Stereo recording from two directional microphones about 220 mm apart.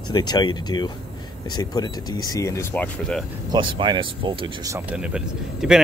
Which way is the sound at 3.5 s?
20° right (ahead or behind).